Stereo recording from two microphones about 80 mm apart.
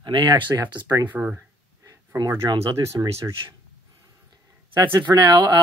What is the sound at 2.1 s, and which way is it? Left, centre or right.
Speech, right.